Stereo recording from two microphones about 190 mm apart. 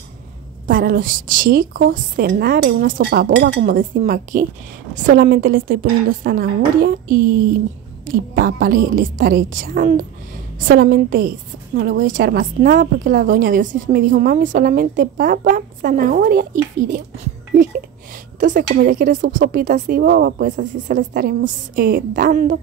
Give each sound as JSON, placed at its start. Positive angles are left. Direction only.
{"t": 0.7, "sound": "a woman's voice", "side_deg": -45}
{"t": 8.5, "sound": "a woman's voice", "side_deg": -50}
{"t": 18.6, "sound": "a woman's voice", "side_deg": -50}